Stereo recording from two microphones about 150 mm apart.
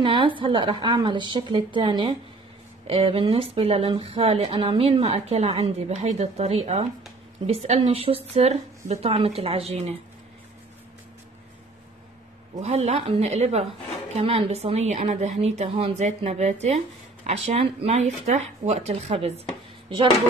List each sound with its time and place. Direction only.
0.0 s a woman's voice: 35° right (ahead or behind)
12.6 s a woman's voice: 45° right (ahead or behind)